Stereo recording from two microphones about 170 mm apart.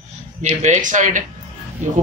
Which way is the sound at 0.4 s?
45° right (ahead or behind).